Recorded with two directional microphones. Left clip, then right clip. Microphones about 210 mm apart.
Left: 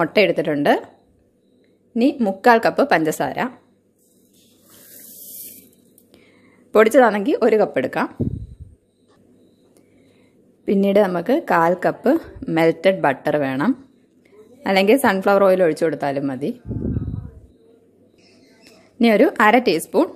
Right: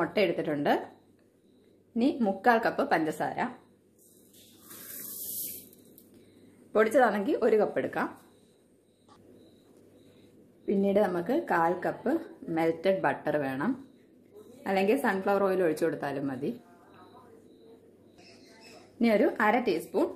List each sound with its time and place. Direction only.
0.0 s a woman's voice: 40° left (ahead or behind)
2.0 s a woman's voice: 45° left (ahead or behind)
6.7 s a woman's voice: 45° left (ahead or behind)
10.6 s a woman's voice: 50° left (ahead or behind)
18.9 s a woman's voice: 50° left (ahead or behind)